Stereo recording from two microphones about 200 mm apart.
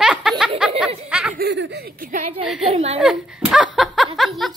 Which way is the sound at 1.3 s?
55° right (ahead or behind).